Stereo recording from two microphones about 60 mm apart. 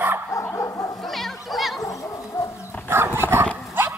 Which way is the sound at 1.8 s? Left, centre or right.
Left.